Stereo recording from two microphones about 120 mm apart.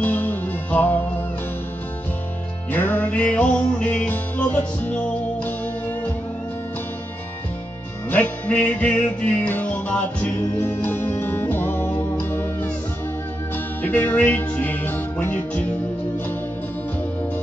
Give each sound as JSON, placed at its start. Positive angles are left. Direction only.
{"t": 0.0, "sound": "music", "side_deg": 15}
{"t": 2.7, "sound": "music", "side_deg": 15}
{"t": 8.1, "sound": "music", "side_deg": 15}
{"t": 13.8, "sound": "music", "side_deg": 15}